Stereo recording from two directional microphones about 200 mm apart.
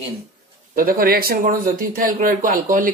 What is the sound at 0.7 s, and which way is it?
A man's voice, 45° right (ahead or behind).